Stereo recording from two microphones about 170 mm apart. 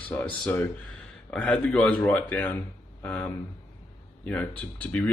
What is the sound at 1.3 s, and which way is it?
Speech, 5° left (ahead or behind).